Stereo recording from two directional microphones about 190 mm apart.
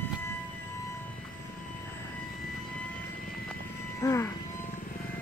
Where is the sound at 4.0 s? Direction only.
15° left (ahead or behind).